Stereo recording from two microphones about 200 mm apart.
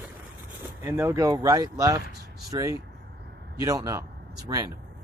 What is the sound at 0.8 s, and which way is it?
Speech, 10° right (ahead or behind).